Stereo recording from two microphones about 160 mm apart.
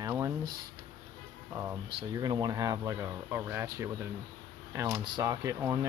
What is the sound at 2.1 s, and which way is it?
Speech, 25° right (ahead or behind).